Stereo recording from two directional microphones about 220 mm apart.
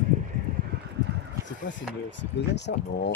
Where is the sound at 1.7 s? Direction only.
55° left (ahead or behind).